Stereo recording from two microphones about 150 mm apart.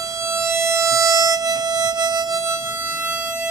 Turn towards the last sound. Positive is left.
turn(degrees=-10)  # may be behind; listen again after turning